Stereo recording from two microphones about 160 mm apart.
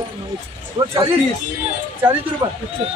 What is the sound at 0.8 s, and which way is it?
Speech, 30° right (ahead or behind).